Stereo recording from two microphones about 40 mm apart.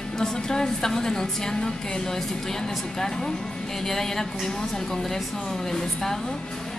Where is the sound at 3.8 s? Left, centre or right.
Centre.